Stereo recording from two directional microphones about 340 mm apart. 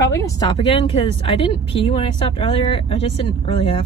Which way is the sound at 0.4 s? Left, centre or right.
Centre.